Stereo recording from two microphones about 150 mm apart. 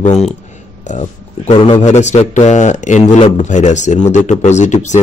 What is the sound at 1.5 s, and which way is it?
Speech, 35° left (ahead or behind).